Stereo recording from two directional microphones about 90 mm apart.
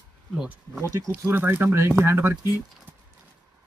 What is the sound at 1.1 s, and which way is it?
Speech, 25° right (ahead or behind).